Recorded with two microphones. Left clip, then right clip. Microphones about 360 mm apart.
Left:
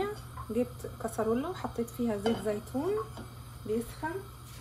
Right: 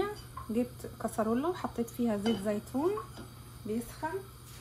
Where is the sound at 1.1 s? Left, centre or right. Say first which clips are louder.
Even; centre.